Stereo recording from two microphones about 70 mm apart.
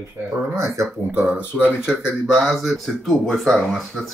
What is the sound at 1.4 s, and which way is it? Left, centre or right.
Speech, centre.